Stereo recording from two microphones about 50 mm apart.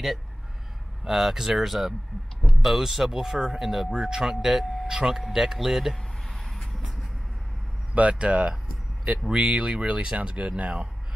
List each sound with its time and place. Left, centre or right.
1.0 s speech: centre
6.3 s vehicle: centre
7.9 s speech: right